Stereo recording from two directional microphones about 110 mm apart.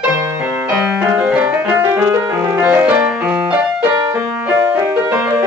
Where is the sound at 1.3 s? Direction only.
15° right (ahead or behind).